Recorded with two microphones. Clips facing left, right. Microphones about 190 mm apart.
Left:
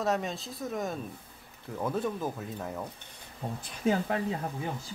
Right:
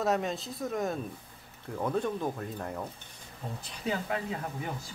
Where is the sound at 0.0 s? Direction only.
Centre (ahead or behind).